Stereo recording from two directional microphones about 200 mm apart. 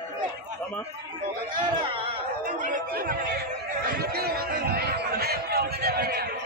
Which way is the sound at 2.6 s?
45° right (ahead or behind).